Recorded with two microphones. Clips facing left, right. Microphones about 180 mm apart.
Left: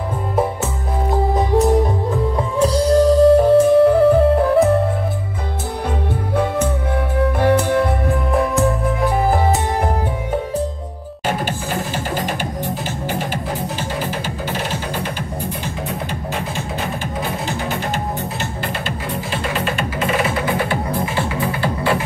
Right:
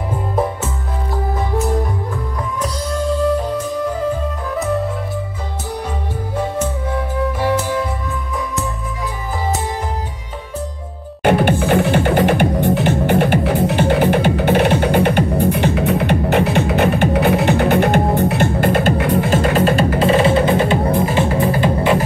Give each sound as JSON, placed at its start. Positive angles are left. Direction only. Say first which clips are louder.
{"t": 2.5, "sound": "music", "louder": "left 10 dB", "side_deg": 30}
{"t": 3.7, "sound": "music", "louder": "left 9 dB", "side_deg": 75}
{"t": 7.3, "sound": "music", "louder": "left 5 dB", "side_deg": 60}
{"t": 11.2, "sound": "music", "louder": "right 9 dB", "side_deg": -65}
{"t": 21.3, "sound": "music", "louder": "right 5 dB", "side_deg": -40}